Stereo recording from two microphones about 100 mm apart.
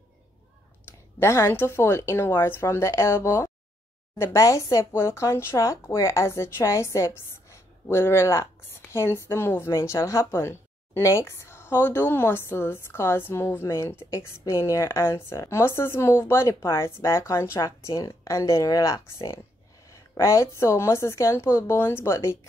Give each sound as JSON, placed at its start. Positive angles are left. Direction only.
{"t": 1.2, "sound": "speech", "side_deg": 25}